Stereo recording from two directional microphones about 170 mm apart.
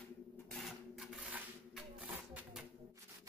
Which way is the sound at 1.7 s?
5° right (ahead or behind).